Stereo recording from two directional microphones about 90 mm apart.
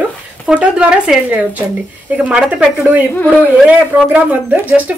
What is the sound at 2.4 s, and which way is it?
Speech, 5° right (ahead or behind).